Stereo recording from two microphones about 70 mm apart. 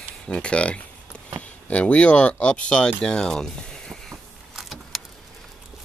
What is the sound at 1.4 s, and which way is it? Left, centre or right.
Speech, centre.